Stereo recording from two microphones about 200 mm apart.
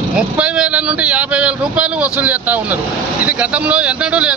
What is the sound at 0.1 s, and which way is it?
A man's voice, 5° right (ahead or behind).